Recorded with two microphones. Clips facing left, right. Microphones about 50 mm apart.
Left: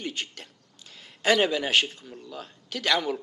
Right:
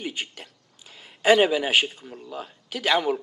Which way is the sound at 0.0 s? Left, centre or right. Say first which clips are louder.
Right 2 dB; centre.